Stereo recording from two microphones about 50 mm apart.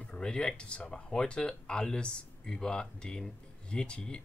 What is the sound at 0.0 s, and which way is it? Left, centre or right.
Speech, centre.